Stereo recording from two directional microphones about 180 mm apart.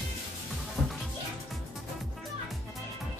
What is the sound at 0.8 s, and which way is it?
Music, centre (ahead or behind).